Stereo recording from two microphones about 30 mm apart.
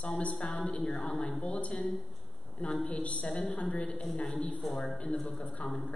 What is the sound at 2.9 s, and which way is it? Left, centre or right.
Speech, left.